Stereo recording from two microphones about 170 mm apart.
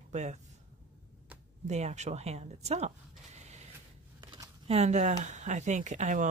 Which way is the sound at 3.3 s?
40° right (ahead or behind).